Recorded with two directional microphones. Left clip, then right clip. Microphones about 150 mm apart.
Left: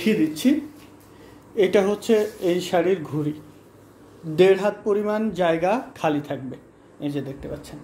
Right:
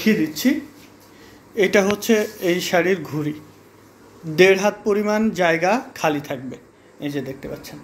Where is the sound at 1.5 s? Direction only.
15° left (ahead or behind).